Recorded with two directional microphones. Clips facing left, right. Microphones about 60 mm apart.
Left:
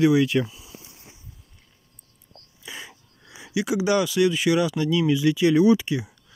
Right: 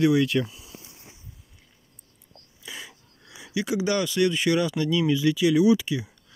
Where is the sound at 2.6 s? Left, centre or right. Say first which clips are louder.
Left 1 dB; left.